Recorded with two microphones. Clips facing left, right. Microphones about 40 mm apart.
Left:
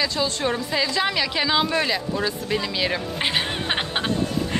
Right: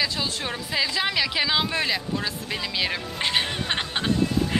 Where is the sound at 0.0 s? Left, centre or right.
Centre.